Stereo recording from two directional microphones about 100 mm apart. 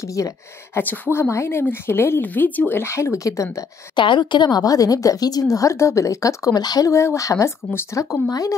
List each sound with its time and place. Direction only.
0.0 s a woman's voice: 35° left (ahead or behind)
0.7 s speech: 20° left (ahead or behind)
3.9 s a woman's voice: 50° left (ahead or behind)
6.9 s a woman's voice: 30° left (ahead or behind)